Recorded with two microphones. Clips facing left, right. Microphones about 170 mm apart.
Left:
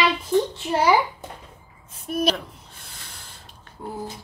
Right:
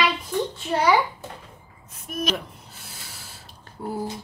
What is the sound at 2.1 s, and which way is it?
Speech, 30° left (ahead or behind).